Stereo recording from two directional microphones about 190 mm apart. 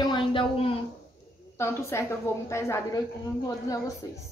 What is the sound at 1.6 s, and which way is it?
A woman's voice, 15° left (ahead or behind).